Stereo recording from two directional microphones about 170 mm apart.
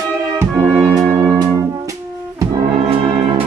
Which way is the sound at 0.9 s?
20° right (ahead or behind).